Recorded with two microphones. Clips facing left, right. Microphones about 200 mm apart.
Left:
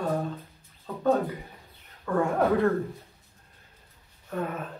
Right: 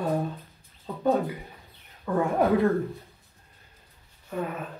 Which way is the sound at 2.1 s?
15° right (ahead or behind).